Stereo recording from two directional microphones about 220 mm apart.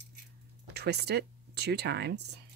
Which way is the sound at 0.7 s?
50° right (ahead or behind).